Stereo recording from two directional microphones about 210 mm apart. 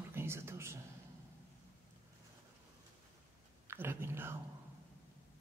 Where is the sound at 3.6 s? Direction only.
10° right (ahead or behind).